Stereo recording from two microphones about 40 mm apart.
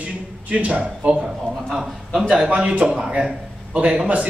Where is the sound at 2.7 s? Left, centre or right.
Right.